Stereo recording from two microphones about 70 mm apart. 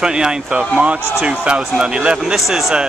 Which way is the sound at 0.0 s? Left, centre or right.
Centre.